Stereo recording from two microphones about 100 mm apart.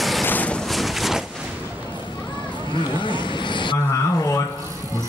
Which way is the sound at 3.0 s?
55° left (ahead or behind).